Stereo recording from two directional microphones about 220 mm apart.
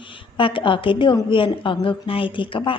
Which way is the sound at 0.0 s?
25° left (ahead or behind).